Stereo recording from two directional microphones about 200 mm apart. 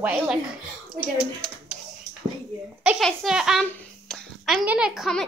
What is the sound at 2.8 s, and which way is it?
A child's voice, centre (ahead or behind).